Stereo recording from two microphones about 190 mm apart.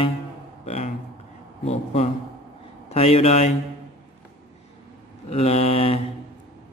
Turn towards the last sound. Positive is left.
turn(degrees=30)  # may be behind; listen again after turning